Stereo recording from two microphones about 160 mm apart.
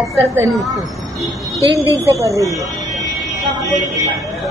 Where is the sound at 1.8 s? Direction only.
20° right (ahead or behind).